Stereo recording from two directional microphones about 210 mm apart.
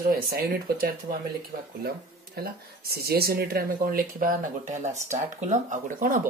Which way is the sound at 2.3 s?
45° right (ahead or behind).